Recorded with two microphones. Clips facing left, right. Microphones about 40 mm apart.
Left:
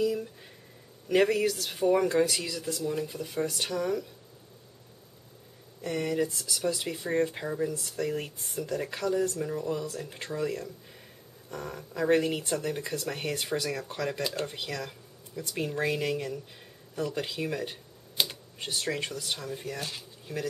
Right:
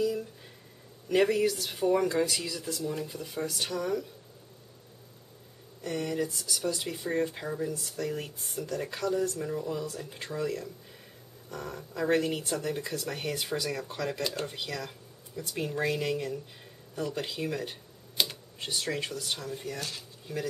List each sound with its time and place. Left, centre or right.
0.0 s a sound: centre
1.0 s speech: centre
5.9 s speech: centre
9.3 s speech: centre